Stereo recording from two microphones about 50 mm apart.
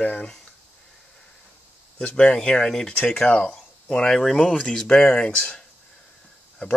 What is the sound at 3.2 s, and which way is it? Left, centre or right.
Speech, left.